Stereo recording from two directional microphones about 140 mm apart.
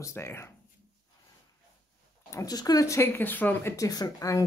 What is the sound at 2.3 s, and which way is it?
Speech, 25° left (ahead or behind).